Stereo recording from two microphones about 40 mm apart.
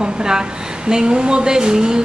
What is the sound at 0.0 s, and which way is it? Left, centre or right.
A woman's voice, centre.